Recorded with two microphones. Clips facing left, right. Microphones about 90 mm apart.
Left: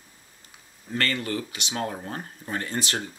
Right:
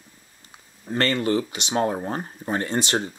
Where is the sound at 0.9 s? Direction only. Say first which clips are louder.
Right 6 dB; 25° right (ahead or behind).